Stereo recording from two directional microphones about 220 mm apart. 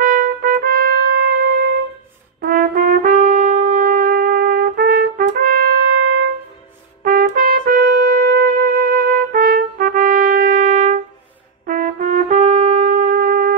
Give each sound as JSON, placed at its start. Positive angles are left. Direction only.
{"t": 0.0, "sound": "trumpet", "side_deg": -40}
{"t": 2.4, "sound": "brass instrument", "side_deg": -40}
{"t": 7.1, "sound": "trumpet", "side_deg": -40}